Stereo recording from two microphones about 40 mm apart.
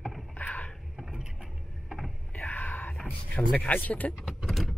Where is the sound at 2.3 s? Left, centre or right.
Left.